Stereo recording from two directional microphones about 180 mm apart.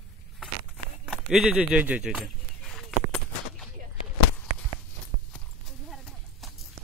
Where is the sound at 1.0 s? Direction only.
Centre (ahead or behind).